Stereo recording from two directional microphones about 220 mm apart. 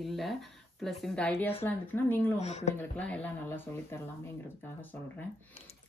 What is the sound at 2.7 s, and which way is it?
Speech, 5° left (ahead or behind).